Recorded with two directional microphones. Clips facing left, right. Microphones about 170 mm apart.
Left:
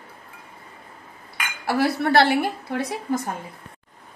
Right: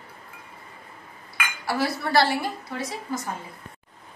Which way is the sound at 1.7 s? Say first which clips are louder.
Left 4 dB; 65° left (ahead or behind).